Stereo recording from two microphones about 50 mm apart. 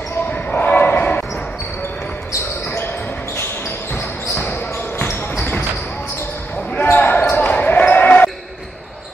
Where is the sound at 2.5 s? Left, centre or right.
Left.